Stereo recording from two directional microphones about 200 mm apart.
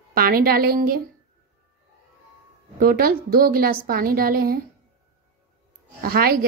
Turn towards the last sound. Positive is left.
turn(degrees=-50)  # may be behind; listen again after turning